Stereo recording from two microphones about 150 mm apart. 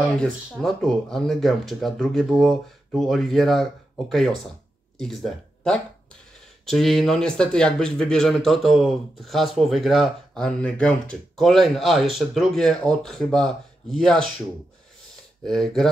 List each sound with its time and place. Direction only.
0.5 s speech: centre (ahead or behind)
4.9 s speech: centre (ahead or behind)
15.4 s speech: 5° left (ahead or behind)